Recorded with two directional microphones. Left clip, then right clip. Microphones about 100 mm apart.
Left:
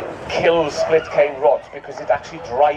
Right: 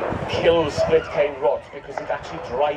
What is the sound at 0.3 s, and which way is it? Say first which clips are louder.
Speech: left 3 dB; 35° left (ahead or behind).